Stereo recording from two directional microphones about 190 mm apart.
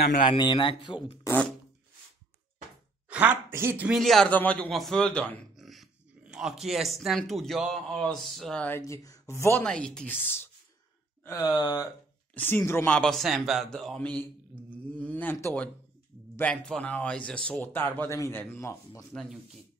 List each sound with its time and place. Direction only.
0.0 s a man's voice: 45° left (ahead or behind)
0.3 s speech: 25° left (ahead or behind)
3.1 s a man's voice: 10° right (ahead or behind)
11.2 s speech: 20° left (ahead or behind)
12.4 s speech: 10° left (ahead or behind)
19.1 s a man's voice: centre (ahead or behind)